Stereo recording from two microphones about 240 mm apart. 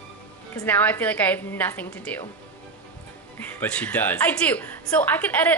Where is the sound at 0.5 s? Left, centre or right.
Centre.